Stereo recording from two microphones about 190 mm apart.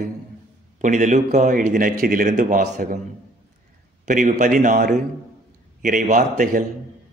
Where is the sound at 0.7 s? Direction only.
40° right (ahead or behind).